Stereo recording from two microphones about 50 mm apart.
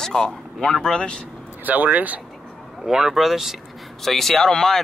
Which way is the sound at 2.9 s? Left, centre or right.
Centre.